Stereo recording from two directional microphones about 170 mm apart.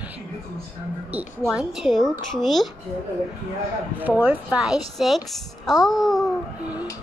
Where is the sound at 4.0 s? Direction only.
10° right (ahead or behind).